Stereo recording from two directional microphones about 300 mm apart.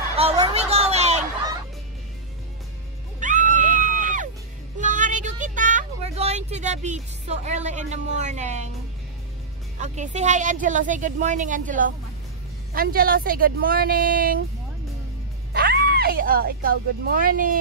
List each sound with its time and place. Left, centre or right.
0.2 s a sound: centre
3.2 s music: right
4.7 s vehicle: right
9.8 s a woman's voice: right
15.5 s speech: right